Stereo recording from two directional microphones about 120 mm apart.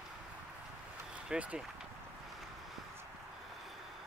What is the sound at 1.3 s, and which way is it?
Speech, 10° right (ahead or behind).